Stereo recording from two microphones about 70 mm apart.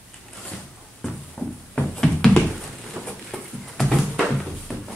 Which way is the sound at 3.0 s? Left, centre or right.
Right.